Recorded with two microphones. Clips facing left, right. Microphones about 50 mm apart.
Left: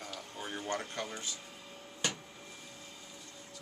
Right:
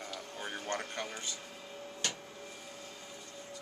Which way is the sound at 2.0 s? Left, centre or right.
Centre.